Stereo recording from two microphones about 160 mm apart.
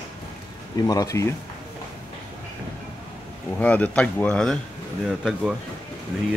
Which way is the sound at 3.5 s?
10° left (ahead or behind).